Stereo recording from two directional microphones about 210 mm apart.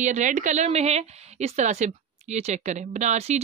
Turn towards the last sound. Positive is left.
turn(degrees=-35)  # may be behind; listen again after turning